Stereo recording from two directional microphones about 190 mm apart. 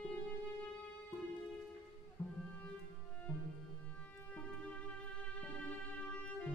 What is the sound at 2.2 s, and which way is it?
Music, 20° left (ahead or behind).